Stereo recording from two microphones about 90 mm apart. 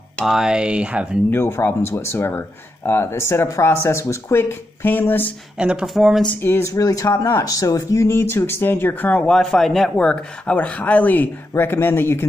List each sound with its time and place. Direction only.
0.2 s speech: 5° right (ahead or behind)
1.3 s speech: 25° left (ahead or behind)
5.6 s speech: 10° right (ahead or behind)
6.4 s speech: 25° left (ahead or behind)
6.7 s speech: 40° left (ahead or behind); by 9.3 s 20° left (ahead or behind)
9.3 s speech: 5° left (ahead or behind); by 12.3 s 25° left (ahead or behind)